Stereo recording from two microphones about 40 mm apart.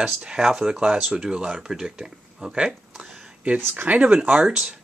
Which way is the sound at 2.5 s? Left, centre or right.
Right.